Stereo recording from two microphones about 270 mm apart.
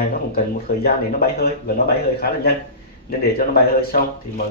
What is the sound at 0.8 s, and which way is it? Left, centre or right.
Speech, left.